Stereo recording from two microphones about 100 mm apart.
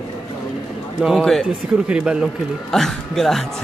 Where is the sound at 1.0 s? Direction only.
Centre (ahead or behind).